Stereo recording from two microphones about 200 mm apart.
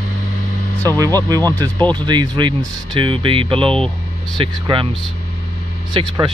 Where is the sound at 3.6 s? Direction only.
5° left (ahead or behind).